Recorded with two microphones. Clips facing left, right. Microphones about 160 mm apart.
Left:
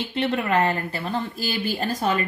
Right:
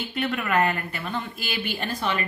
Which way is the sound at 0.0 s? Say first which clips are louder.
Left 3 dB; 30° left (ahead or behind).